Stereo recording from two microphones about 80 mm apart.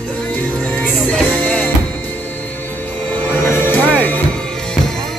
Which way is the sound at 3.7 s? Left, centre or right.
Left.